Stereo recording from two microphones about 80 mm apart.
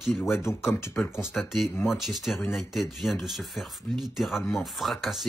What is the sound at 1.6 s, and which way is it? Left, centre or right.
Speech, left.